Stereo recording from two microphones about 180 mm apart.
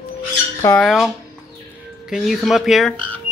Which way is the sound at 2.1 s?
Centre (ahead or behind).